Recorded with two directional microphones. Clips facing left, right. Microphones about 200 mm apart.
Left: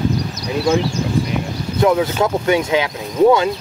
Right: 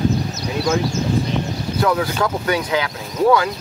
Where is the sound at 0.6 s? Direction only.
30° left (ahead or behind).